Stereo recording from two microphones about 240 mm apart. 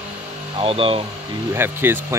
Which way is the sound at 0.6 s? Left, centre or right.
Right.